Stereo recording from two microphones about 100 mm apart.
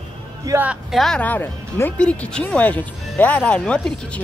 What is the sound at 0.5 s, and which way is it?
Speech, 30° right (ahead or behind).